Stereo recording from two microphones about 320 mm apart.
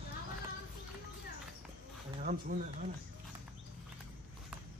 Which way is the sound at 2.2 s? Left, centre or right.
Right.